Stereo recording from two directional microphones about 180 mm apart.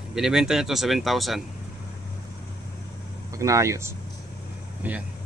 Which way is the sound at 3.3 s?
15° right (ahead or behind).